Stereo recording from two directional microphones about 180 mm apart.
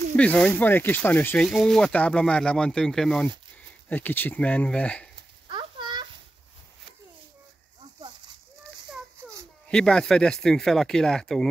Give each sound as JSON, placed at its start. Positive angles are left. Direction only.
{"t": 0.1, "sound": "speech", "side_deg": 5}
{"t": 5.5, "sound": "a sound", "side_deg": -25}
{"t": 9.7, "sound": "speech", "side_deg": 5}